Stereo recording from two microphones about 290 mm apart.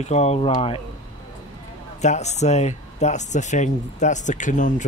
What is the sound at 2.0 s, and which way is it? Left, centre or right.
Speech, left.